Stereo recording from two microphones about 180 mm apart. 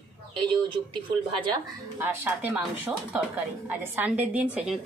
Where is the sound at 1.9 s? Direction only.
15° right (ahead or behind).